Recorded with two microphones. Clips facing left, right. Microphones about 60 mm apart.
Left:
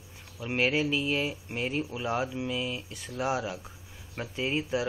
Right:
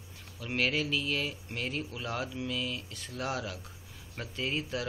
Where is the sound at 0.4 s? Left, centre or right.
Centre.